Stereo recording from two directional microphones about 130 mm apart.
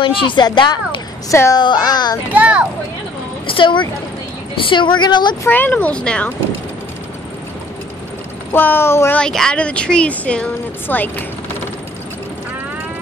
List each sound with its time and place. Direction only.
0.0 s a woman's voice: 40° left (ahead or behind)
1.3 s speech: 20° left (ahead or behind)
1.6 s a woman's voice: 35° left (ahead or behind)
2.3 s speech: 10° right (ahead or behind)
3.4 s a woman's voice: 40° left (ahead or behind)
5.4 s speech: 15° left (ahead or behind)
8.5 s speech: 15° left (ahead or behind)
9.2 s speech: 5° left (ahead or behind)